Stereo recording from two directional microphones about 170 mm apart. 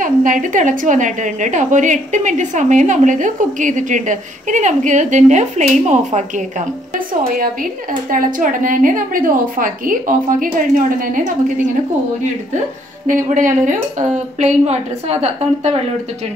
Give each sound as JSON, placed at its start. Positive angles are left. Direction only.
{"t": 0.0, "sound": "a woman's voice", "side_deg": -50}
{"t": 7.9, "sound": "a woman's voice", "side_deg": -55}
{"t": 13.0, "sound": "a woman's voice", "side_deg": -50}